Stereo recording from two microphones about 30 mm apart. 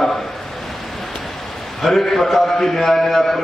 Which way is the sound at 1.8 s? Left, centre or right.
Centre.